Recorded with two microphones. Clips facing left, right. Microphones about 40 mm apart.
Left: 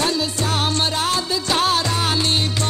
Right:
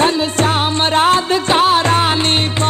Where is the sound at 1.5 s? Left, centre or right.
Right.